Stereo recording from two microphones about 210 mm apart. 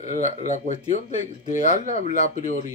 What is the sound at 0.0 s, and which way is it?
Speech, 35° left (ahead or behind).